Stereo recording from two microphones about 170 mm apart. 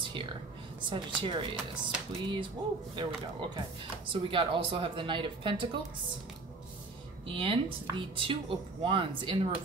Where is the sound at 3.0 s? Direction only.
25° right (ahead or behind).